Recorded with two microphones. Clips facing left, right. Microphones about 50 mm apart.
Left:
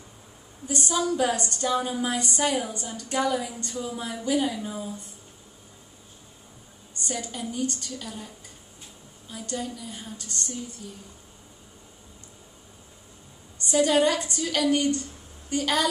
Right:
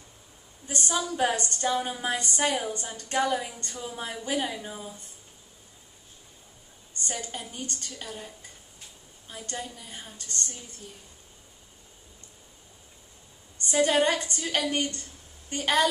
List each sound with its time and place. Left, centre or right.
0.7 s a woman's voice: right
7.1 s a woman's voice: right
9.3 s a woman's voice: right
13.6 s a woman's voice: right